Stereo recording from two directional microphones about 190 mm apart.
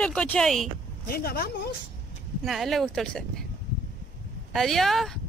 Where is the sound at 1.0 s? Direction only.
55° left (ahead or behind).